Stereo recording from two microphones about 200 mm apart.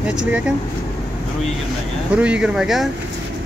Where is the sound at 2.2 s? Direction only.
5° right (ahead or behind).